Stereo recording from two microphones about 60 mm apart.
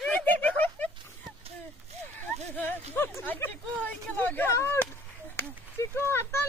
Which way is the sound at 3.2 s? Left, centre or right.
Left.